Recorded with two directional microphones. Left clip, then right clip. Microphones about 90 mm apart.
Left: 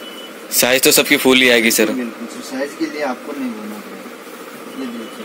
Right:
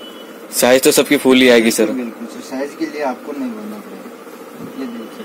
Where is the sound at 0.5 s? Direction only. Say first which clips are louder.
Right 2 dB; 25° right (ahead or behind).